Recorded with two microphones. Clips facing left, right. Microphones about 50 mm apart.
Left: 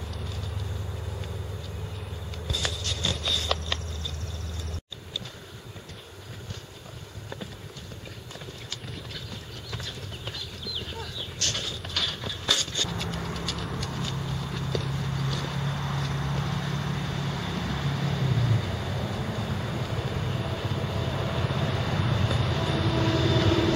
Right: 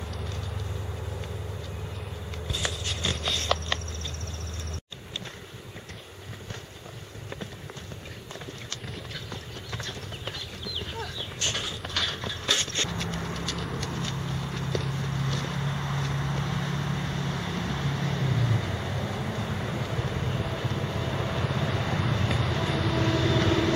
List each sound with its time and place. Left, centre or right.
2.4 s a sound: right
3.2 s clip-clop: centre
9.8 s clip-clop: centre
11.3 s patter: centre
11.8 s clip-clop: centre
12.9 s pigeon: centre